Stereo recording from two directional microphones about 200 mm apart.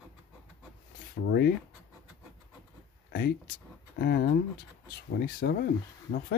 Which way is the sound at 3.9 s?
55° left (ahead or behind).